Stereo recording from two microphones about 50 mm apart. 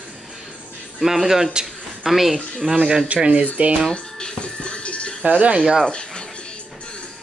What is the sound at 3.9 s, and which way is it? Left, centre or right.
Music, centre.